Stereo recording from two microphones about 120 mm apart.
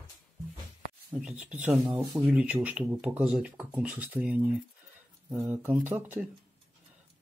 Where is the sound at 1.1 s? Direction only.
10° right (ahead or behind).